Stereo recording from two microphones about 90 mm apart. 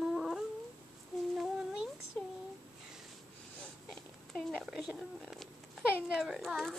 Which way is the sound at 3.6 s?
5° left (ahead or behind).